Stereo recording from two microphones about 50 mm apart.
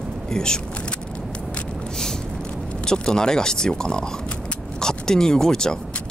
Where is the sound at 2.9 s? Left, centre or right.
Centre.